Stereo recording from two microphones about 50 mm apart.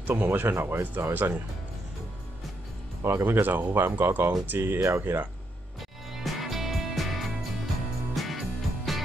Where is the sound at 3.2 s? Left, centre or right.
Right.